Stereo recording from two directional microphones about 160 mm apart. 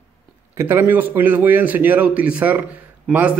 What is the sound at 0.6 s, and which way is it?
A man's voice, 15° right (ahead or behind).